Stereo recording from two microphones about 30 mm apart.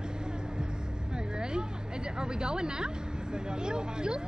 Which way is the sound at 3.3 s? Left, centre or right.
Right.